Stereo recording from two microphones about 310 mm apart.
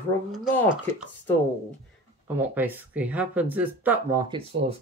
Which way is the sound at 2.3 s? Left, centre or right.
Centre.